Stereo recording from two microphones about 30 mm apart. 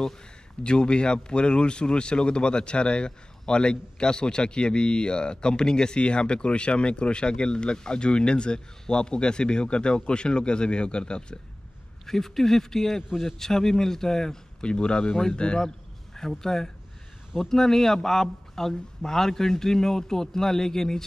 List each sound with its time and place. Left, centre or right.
0.7 s speech: left
12.1 s a man's voice: centre
14.6 s speech: left
16.2 s a man's voice: centre